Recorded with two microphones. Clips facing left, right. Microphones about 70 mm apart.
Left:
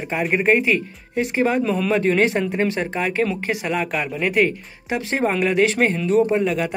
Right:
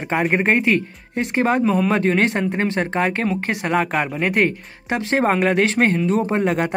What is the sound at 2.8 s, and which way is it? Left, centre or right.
Speech, right.